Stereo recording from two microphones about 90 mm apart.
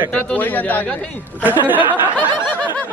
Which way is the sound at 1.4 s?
20° right (ahead or behind).